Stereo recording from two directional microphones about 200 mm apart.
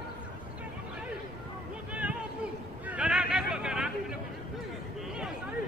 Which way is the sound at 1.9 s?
5° right (ahead or behind).